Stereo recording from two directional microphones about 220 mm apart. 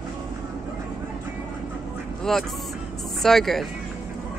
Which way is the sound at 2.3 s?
Centre (ahead or behind).